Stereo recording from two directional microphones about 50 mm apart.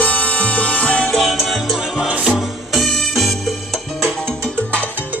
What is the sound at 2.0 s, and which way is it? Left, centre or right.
Music, centre.